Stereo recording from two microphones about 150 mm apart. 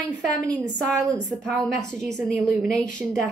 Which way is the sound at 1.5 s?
Centre (ahead or behind).